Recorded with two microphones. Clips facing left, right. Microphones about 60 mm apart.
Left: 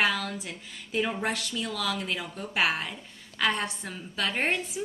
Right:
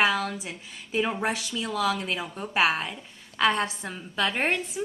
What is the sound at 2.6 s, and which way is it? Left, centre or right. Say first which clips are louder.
Speech: right 3 dB; centre.